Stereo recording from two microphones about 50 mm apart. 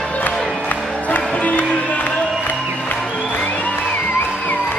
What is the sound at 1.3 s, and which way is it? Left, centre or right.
Music, left.